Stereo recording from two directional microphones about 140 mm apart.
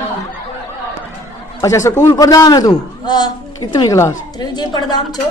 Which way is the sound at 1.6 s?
20° left (ahead or behind).